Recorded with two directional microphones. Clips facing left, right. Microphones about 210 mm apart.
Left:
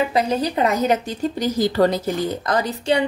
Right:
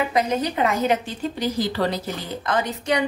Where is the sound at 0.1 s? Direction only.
35° left (ahead or behind).